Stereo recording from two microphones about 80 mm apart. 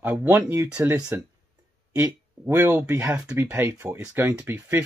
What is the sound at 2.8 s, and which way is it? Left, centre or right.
Speech, right.